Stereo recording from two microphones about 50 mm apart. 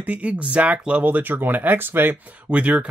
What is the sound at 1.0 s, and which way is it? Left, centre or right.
Speech, right.